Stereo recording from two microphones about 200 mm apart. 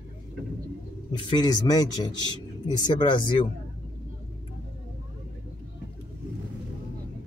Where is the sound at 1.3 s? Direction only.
20° left (ahead or behind).